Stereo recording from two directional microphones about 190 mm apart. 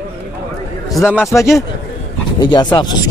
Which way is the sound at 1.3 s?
15° left (ahead or behind).